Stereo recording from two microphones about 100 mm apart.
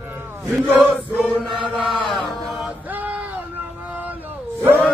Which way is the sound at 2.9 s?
15° right (ahead or behind).